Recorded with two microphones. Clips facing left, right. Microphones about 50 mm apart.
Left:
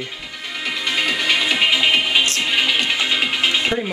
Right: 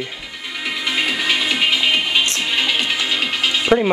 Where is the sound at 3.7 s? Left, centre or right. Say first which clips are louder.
Right 7 dB; right.